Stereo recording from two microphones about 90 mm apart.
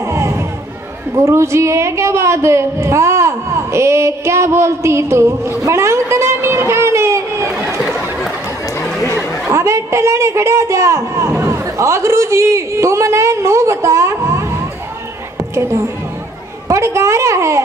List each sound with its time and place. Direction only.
0.0 s music: 30° right (ahead or behind)
1.1 s a sound: 30° right (ahead or behind)
9.5 s a man's voice: 30° right (ahead or behind)
15.5 s a woman's voice: 30° right (ahead or behind)